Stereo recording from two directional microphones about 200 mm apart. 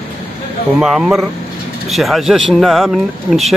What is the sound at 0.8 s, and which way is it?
Speech, 5° right (ahead or behind).